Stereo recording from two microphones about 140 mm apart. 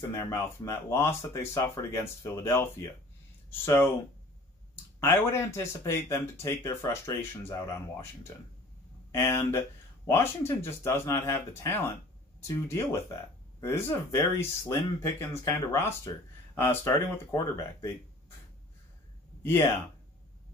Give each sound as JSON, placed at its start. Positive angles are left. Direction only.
{"t": 0.1, "sound": "speech", "side_deg": 20}
{"t": 5.0, "sound": "speech", "side_deg": 20}
{"t": 19.4, "sound": "speech", "side_deg": 20}